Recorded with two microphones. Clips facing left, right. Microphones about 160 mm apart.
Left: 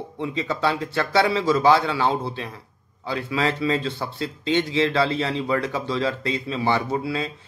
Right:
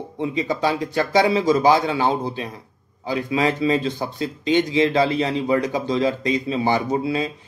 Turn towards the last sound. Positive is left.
turn(degrees=-20)  # may be behind; listen again after turning